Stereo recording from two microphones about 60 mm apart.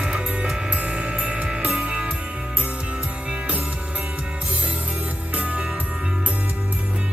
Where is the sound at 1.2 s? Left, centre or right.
Centre.